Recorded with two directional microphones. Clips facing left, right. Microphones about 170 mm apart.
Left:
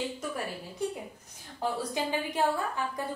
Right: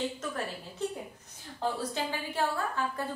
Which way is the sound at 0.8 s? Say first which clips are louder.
Left 1 dB; 10° left (ahead or behind).